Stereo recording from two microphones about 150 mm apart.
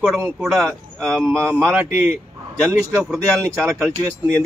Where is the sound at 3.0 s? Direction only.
Centre (ahead or behind).